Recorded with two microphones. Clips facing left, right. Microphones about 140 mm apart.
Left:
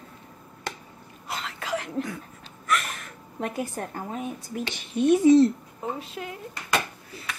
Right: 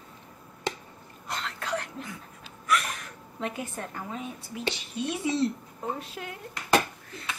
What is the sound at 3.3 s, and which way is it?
A woman's voice, 40° left (ahead or behind).